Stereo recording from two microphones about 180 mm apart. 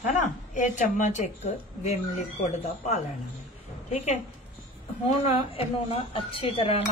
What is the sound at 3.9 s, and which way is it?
Speech, 40° left (ahead or behind).